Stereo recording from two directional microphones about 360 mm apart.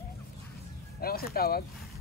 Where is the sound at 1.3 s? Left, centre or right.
Left.